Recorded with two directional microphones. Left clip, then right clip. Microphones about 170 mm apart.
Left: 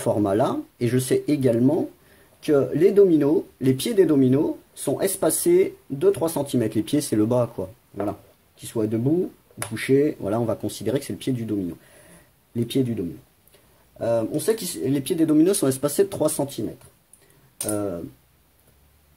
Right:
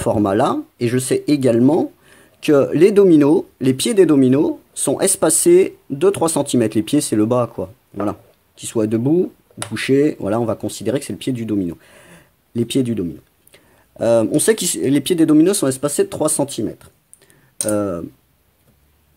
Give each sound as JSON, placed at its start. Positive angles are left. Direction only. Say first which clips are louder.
{"t": 0.0, "sound": "speech", "louder": "right 5 dB", "side_deg": -25}
{"t": 8.1, "sound": "speech", "louder": "right 5 dB", "side_deg": -30}
{"t": 12.1, "sound": "a sound", "louder": "right 6 dB", "side_deg": -25}
{"t": 13.5, "sound": "speech", "louder": "right 7 dB", "side_deg": -40}